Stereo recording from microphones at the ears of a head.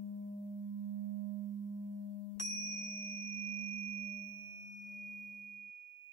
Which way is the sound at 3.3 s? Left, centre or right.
Right.